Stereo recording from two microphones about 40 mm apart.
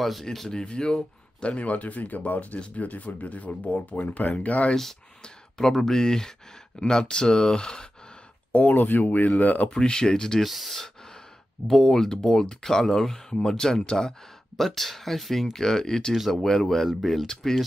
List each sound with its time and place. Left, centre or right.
0.0 s speech: centre
0.5 s speech: centre; by 4.6 s left
5.2 s speech: centre
8.5 s speech: left
9.7 s speech: centre
10.4 s speech: centre
15.5 s speech: centre